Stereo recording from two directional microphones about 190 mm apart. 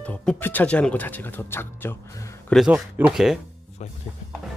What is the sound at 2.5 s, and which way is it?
Speech, 5° right (ahead or behind).